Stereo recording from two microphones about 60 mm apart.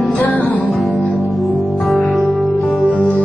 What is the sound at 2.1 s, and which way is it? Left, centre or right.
Music, centre.